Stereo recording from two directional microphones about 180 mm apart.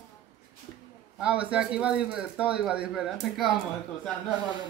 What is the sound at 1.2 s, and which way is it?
A man's voice, 5° right (ahead or behind).